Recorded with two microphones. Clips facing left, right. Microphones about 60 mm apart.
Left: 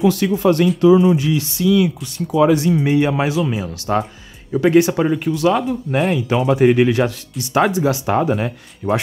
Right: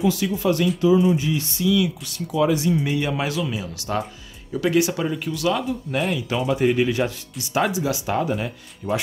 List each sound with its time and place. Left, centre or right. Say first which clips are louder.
0.0 s speech: left 6 dB; left
0.7 s speech: left 5 dB; left
2.3 s speech: left 6 dB; left
2.8 s speech: left 7 dB; left